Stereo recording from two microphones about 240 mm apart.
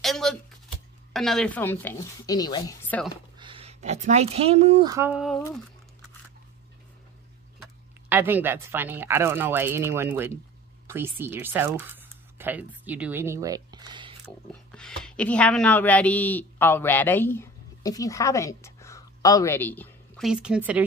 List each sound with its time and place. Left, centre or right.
0.0 s a sound: centre
1.1 s a woman's voice: centre
3.3 s speech: right; by 5.4 s centre
8.1 s speech: centre
14.5 s speech: centre